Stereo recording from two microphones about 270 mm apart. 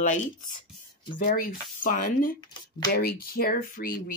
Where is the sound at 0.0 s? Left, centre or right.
Left.